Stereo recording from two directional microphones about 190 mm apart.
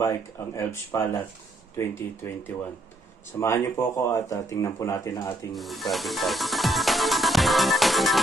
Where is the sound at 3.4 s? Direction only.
15° left (ahead or behind).